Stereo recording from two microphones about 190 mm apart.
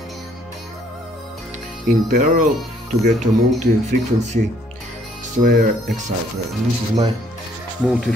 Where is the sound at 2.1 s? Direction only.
45° right (ahead or behind).